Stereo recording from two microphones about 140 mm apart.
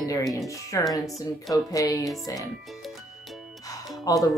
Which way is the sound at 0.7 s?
25° left (ahead or behind).